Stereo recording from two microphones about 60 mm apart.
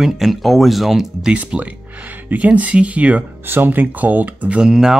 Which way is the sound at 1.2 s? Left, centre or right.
Centre.